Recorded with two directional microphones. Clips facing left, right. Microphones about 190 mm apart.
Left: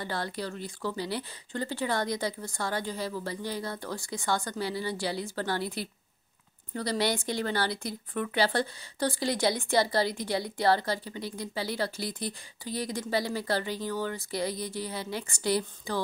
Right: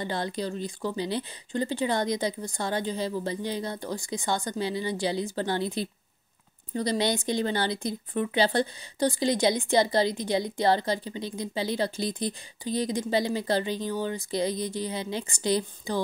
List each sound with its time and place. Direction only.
0.0 s speech: 20° right (ahead or behind)